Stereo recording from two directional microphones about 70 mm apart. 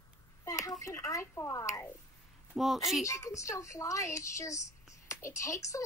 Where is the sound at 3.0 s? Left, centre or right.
Left.